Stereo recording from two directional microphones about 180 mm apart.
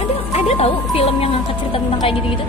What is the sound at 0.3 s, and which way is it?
Speech, 35° left (ahead or behind).